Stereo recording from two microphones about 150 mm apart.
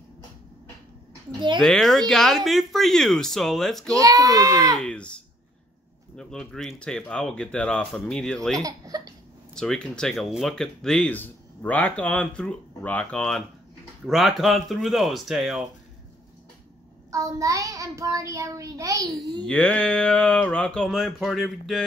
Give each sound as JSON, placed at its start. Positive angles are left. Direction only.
{"t": 1.6, "sound": "speech", "side_deg": 0}
{"t": 3.9, "sound": "child singing", "side_deg": -25}
{"t": 4.7, "sound": "speech", "side_deg": 5}
{"t": 8.5, "sound": "child singing", "side_deg": -25}
{"t": 9.6, "sound": "speech", "side_deg": 5}
{"t": 17.1, "sound": "child singing", "side_deg": -20}
{"t": 19.4, "sound": "speech", "side_deg": 5}